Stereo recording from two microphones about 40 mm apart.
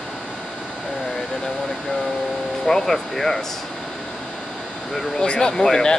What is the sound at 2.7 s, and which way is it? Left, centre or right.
Speech, centre.